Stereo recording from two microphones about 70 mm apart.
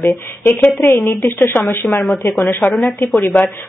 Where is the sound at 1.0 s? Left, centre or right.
Left.